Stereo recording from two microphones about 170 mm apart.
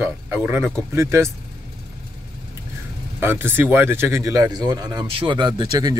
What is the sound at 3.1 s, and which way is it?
Speech, 15° right (ahead or behind).